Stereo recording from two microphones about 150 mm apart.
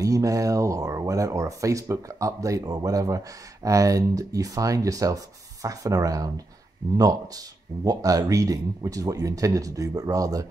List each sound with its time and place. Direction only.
0.0 s speech: 25° right (ahead or behind)